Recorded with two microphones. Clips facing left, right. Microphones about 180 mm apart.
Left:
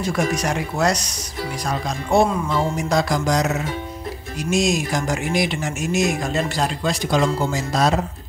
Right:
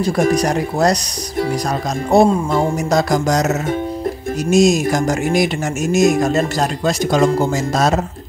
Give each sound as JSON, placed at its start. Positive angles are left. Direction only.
{"t": 0.3, "sound": "speech", "side_deg": -35}
{"t": 2.0, "sound": "speech", "side_deg": -40}